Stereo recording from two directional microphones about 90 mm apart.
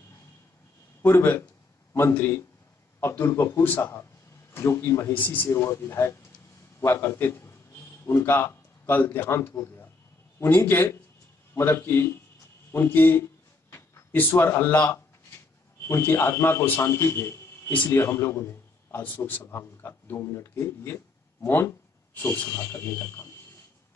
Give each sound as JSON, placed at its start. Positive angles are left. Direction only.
{"t": 1.0, "sound": "a man's voice", "side_deg": 25}
{"t": 5.5, "sound": "a man's voice", "side_deg": 30}